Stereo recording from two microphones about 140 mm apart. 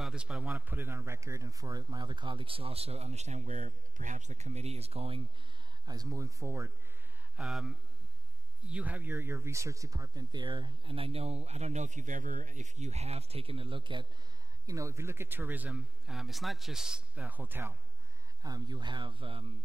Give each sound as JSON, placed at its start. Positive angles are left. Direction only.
{"t": 0.0, "sound": "speech", "side_deg": -5}
{"t": 5.9, "sound": "speech", "side_deg": -25}
{"t": 7.3, "sound": "speech", "side_deg": 0}
{"t": 14.7, "sound": "speech", "side_deg": -20}
{"t": 18.4, "sound": "speech", "side_deg": -30}